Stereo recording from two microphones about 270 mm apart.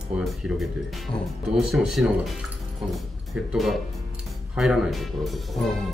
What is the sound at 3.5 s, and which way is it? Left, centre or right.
A man's voice, centre.